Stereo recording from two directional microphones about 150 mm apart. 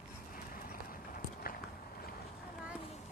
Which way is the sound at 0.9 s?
70° left (ahead or behind).